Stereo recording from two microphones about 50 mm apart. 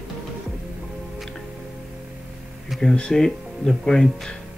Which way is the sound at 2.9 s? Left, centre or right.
Centre.